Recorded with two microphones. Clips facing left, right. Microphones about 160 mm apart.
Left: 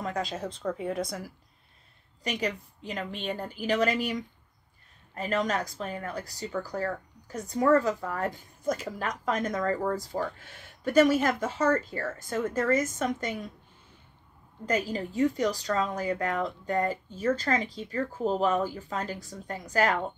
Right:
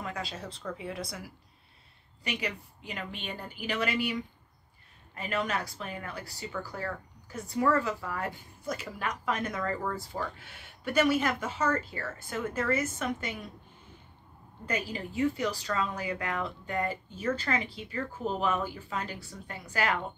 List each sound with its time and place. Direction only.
0.0 s speech: 45° left (ahead or behind)
2.2 s speech: 40° left (ahead or behind)
14.7 s speech: 40° left (ahead or behind)